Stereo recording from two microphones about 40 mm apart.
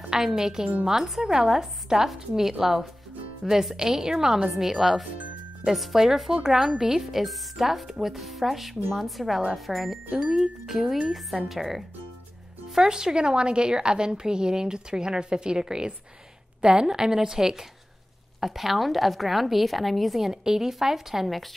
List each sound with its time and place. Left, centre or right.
0.1 s a woman's voice: centre
10.1 s a woman's voice: right
10.7 s a woman's voice: centre